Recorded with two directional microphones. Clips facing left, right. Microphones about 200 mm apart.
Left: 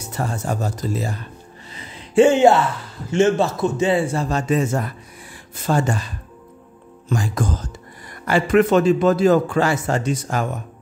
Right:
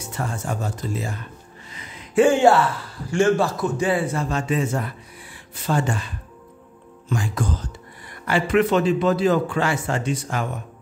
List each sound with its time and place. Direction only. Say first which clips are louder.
0.1 s speech: left 4 dB; 35° left (ahead or behind)
1.7 s a sound: left 2 dB; 30° left (ahead or behind)
3.1 s a man's voice: left 2 dB; 20° left (ahead or behind); by 10.5 s 40° left (ahead or behind)